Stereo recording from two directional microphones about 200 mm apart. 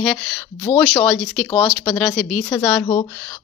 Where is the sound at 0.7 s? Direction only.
25° left (ahead or behind).